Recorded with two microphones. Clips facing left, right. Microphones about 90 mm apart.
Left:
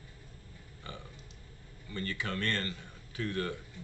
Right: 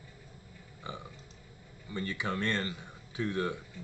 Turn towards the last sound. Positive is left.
turn(degrees=-15)  # may be behind; listen again after turning